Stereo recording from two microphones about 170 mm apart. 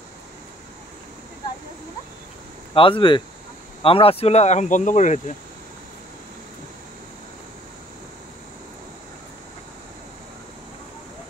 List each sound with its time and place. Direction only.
2.7 s speech: 30° left (ahead or behind)